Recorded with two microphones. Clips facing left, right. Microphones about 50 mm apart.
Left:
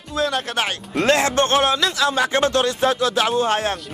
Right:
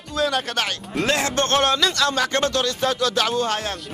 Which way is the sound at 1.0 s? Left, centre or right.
Left.